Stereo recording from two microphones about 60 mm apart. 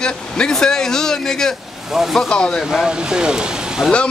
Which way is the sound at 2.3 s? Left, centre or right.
Centre.